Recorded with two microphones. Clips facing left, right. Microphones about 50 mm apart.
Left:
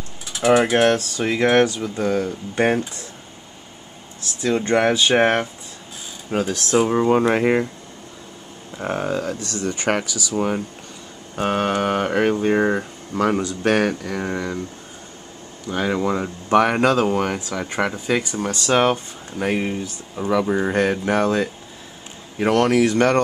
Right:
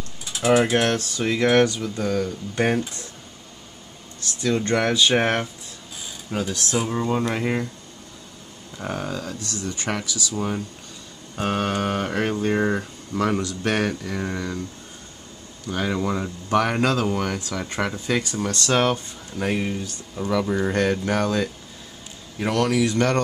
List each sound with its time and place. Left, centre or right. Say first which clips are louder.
0.5 s speech: left 2 dB; left
0.7 s speech: left 4 dB; centre
4.4 s speech: left 3 dB; centre
6.3 s speech: left 6 dB; left
8.7 s speech: left 6 dB; left
15.6 s speech: left 3 dB; centre
17.4 s speech: left 3 dB; centre
22.4 s speech: left 5 dB; left